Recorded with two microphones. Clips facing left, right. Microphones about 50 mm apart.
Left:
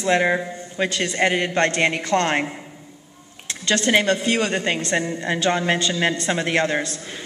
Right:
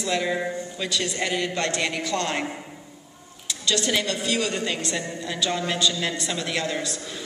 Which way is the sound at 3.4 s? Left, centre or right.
Left.